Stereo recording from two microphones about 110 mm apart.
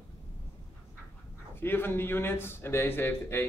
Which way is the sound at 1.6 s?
20° left (ahead or behind).